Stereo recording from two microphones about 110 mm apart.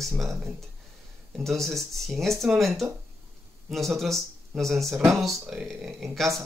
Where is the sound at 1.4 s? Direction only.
Centre (ahead or behind).